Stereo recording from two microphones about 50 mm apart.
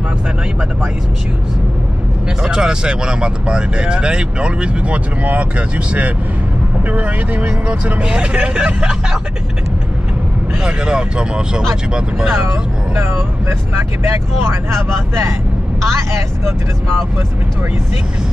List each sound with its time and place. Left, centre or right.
2.4 s speech: centre
10.6 s speech: centre
12.9 s speech: right